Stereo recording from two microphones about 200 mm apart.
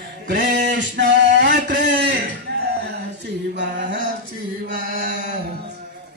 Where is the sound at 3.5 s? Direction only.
60° right (ahead or behind).